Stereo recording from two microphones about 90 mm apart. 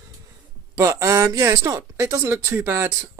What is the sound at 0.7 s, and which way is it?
Speech, 35° right (ahead or behind).